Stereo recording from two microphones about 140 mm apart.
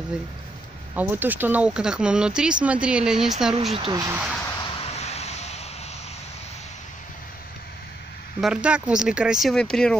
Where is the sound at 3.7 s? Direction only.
35° right (ahead or behind).